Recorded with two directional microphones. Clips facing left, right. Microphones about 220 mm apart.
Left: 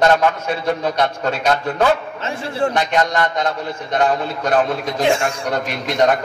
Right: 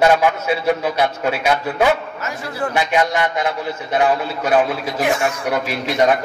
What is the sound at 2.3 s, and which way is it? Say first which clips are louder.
Speech: left 4 dB; 25° left (ahead or behind).